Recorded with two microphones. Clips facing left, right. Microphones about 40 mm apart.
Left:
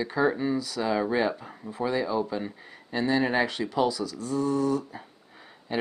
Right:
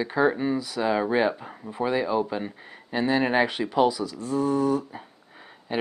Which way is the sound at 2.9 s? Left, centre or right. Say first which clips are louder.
Right 2 dB; centre.